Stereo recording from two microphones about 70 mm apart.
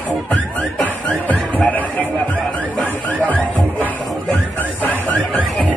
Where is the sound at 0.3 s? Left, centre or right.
Centre.